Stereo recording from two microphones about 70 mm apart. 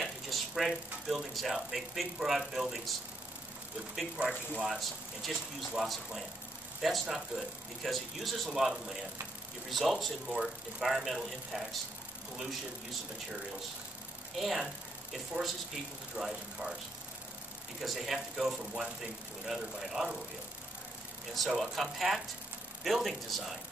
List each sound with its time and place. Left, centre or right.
0.0 s speech: centre
4.2 s speech: right
4.6 s speech: centre
14.4 s speech: centre
17.8 s speech: centre
21.5 s speech: centre